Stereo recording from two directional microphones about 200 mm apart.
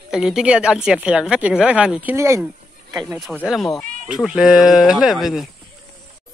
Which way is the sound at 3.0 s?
Centre (ahead or behind).